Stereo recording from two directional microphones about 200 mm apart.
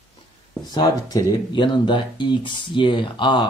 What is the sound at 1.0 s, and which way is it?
Speech, 20° left (ahead or behind).